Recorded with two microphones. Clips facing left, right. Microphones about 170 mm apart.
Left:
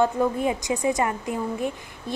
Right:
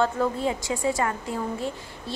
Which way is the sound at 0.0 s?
15° left (ahead or behind).